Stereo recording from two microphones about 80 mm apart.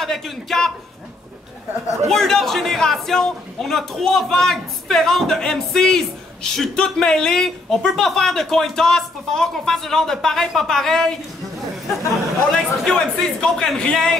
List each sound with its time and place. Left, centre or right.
0.0 s a man's voice: centre
2.0 s a man's voice: centre
12.5 s speech: centre